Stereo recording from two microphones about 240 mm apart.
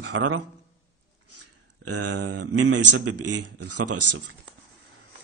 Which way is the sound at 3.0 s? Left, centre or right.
Right.